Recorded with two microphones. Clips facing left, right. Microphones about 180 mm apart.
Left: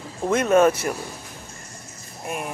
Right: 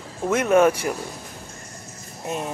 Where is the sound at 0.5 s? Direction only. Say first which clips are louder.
Even; 10° right (ahead or behind).